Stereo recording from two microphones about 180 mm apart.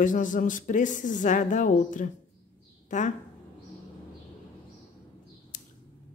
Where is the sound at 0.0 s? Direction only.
45° left (ahead or behind).